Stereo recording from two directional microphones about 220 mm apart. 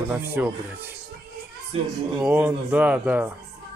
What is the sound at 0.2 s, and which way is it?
Speech, 10° right (ahead or behind).